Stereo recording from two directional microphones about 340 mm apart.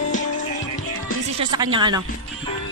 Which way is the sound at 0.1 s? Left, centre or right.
Left.